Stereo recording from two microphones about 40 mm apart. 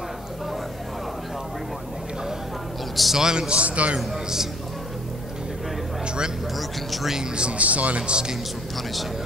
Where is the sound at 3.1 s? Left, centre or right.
Centre.